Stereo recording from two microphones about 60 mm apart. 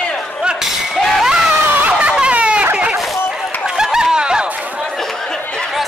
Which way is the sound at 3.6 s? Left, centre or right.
Centre.